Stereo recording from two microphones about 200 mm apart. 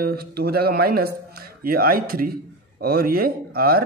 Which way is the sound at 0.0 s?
50° right (ahead or behind).